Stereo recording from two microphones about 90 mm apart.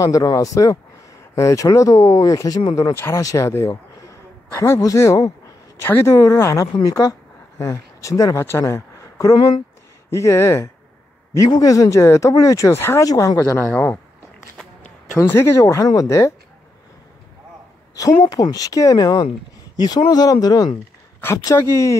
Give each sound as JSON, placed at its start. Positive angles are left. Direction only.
{"t": 0.0, "sound": "speech", "side_deg": 40}
{"t": 2.9, "sound": "speech", "side_deg": 30}
{"t": 8.5, "sound": "speech", "side_deg": 25}
{"t": 12.7, "sound": "speech", "side_deg": 25}
{"t": 13.0, "sound": "speech", "side_deg": 45}
{"t": 13.6, "sound": "speech", "side_deg": 20}
{"t": 15.1, "sound": "speech", "side_deg": 30}
{"t": 18.3, "sound": "speech", "side_deg": 45}
{"t": 21.5, "sound": "speech", "side_deg": 30}